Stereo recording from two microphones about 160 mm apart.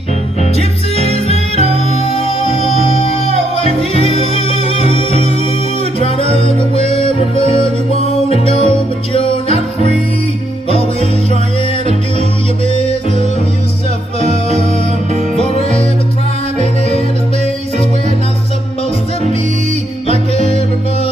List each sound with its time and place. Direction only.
0.4 s music: 40° left (ahead or behind)
6.0 s music: 40° left (ahead or behind)
12.2 s music: 35° left (ahead or behind)
15.1 s music: 40° left (ahead or behind)
20.1 s music: 35° left (ahead or behind)